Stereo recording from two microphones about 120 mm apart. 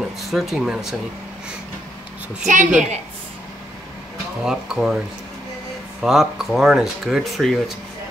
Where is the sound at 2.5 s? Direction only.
90° right.